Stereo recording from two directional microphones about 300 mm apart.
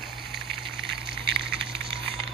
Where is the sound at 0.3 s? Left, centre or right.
Right.